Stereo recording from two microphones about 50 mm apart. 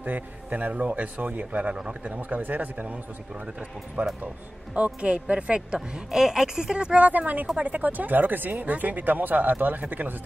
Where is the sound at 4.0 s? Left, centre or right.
Right.